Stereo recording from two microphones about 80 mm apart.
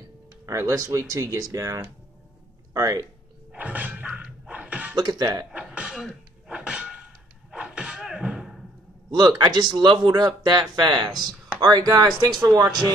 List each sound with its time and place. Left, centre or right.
0.5 s speech: right
3.5 s a sound: centre
4.9 s speech: right
5.5 s throat clearing: centre
7.5 s a sound: centre
9.1 s speech: right
11.6 s speech: right
12.4 s speech: right